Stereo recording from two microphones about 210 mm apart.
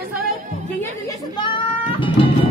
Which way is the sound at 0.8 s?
20° left (ahead or behind).